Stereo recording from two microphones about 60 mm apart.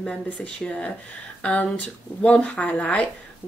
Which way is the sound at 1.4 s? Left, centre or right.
Left.